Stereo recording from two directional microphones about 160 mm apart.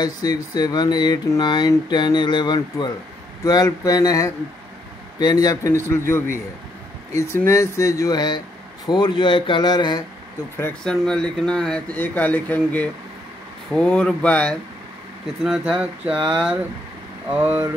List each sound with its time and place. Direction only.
0.0 s speech: 25° left (ahead or behind)
7.3 s speech: 20° left (ahead or behind)
10.6 s speech: 5° left (ahead or behind)
15.4 s speech: 5° right (ahead or behind)